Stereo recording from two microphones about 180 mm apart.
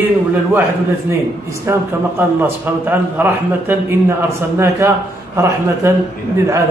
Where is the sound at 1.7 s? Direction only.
15° right (ahead or behind).